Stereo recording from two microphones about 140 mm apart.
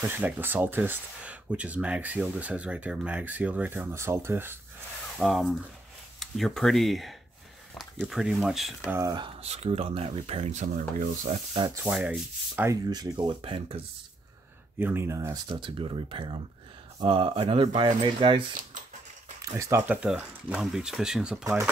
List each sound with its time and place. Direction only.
0.1 s speech: 15° right (ahead or behind)
5.1 s speech: centre (ahead or behind)
8.9 s speech: 25° right (ahead or behind)
9.2 s speech: 45° right (ahead or behind)
11.8 s speech: 10° right (ahead or behind)
12.9 s speech: 30° right (ahead or behind)
13.4 s speech: 40° right (ahead or behind)
14.8 s speech: 15° right (ahead or behind)
15.4 s speech: 35° right (ahead or behind)
19.4 s speech: 20° right (ahead or behind)
19.9 s speech: 10° right (ahead or behind)